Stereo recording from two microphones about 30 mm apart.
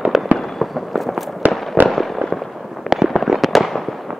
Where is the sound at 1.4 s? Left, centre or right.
Right.